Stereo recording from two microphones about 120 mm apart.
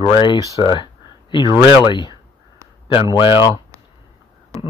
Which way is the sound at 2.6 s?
25° right (ahead or behind).